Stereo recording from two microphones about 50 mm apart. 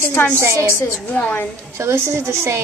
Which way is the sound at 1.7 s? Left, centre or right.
Right.